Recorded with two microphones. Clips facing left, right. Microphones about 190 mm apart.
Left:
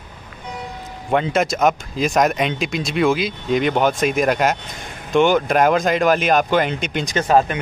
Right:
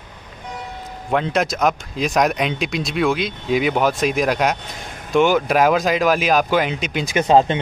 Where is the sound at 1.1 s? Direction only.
Centre (ahead or behind).